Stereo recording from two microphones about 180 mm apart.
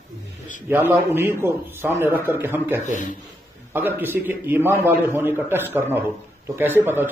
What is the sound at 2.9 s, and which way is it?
Speech, 45° left (ahead or behind).